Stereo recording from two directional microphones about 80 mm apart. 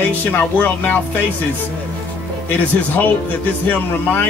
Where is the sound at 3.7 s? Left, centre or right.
Left.